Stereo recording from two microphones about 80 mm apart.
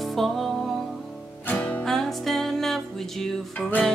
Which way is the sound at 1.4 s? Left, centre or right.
Left.